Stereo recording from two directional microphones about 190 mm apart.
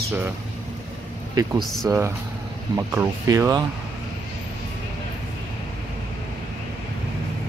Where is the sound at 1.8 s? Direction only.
15° right (ahead or behind).